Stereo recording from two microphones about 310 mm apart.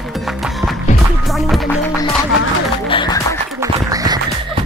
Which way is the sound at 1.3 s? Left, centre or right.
Centre.